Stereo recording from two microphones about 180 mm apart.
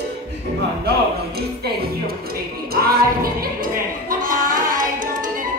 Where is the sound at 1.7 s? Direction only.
60° right (ahead or behind).